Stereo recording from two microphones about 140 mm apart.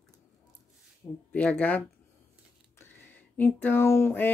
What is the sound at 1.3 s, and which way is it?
Speech, 10° left (ahead or behind).